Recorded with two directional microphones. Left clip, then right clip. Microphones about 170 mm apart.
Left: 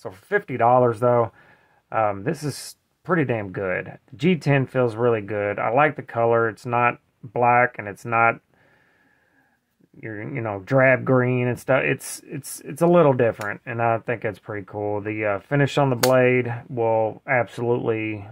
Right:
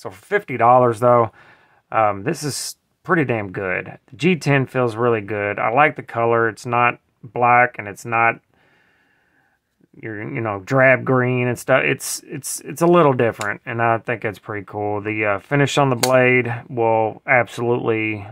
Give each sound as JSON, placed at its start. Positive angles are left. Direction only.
{"t": 0.0, "sound": "speech", "side_deg": -25}
{"t": 9.9, "sound": "speech", "side_deg": -30}